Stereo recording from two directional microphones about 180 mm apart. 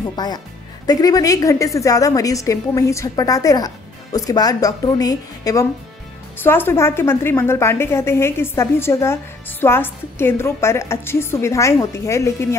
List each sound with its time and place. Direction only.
0.1 s a woman's voice: 25° left (ahead or behind)